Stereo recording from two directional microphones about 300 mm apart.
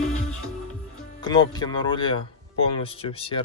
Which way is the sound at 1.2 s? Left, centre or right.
Centre.